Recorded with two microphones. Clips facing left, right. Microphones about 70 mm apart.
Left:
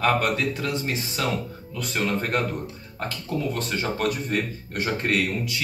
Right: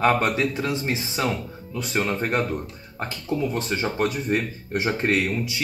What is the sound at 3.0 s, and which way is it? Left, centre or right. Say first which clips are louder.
Speech: right 3 dB; centre.